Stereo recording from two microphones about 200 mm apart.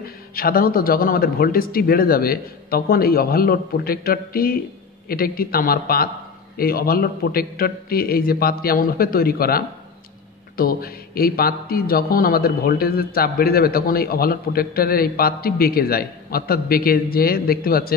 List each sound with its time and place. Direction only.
0.0 s a man's voice: 45° left (ahead or behind)